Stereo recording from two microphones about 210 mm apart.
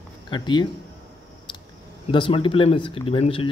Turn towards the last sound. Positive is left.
turn(degrees=25)  # may be behind; listen again after turning